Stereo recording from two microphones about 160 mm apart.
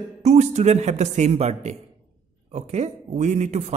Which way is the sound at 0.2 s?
45° right (ahead or behind).